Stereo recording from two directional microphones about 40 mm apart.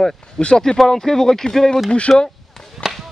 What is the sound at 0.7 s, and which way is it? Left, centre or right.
Speech, centre.